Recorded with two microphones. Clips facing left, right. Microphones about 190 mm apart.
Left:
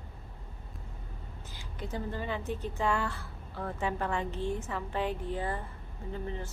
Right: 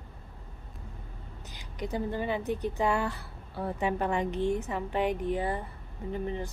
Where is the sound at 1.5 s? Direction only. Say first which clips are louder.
Right 5 dB; 15° right (ahead or behind).